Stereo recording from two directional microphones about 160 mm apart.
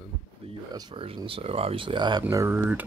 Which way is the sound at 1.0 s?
35° right (ahead or behind).